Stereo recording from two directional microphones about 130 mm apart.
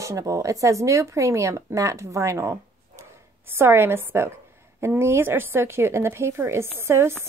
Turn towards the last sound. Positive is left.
turn(degrees=-20)  # may be behind; listen again after turning